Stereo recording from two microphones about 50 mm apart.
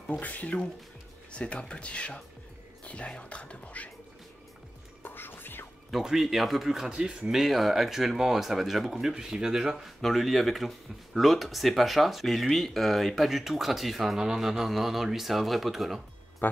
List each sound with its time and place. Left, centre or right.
0.2 s speech: left
5.0 s music: left
5.9 s speech: centre
6.9 s speech: centre
10.0 s speech: centre